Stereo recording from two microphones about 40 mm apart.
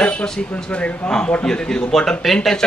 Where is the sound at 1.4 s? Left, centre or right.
Centre.